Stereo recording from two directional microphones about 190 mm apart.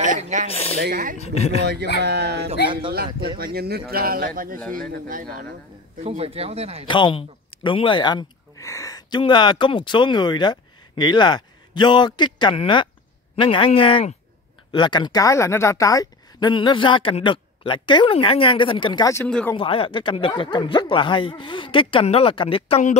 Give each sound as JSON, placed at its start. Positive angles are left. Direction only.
{"t": 0.0, "sound": "speech", "side_deg": -40}
{"t": 0.5, "sound": "speech", "side_deg": 30}
{"t": 0.7, "sound": "speech", "side_deg": -60}
{"t": 1.2, "sound": "speech", "side_deg": 35}
{"t": 1.6, "sound": "speech", "side_deg": -60}
{"t": 4.6, "sound": "speech", "side_deg": 5}
{"t": 4.9, "sound": "speech", "side_deg": -50}
{"t": 5.9, "sound": "speech", "side_deg": -30}
{"t": 6.9, "sound": "a woman's voice", "side_deg": 25}
{"t": 19.2, "sound": "speech", "side_deg": 5}
{"t": 19.5, "sound": "a woman's voice", "side_deg": 30}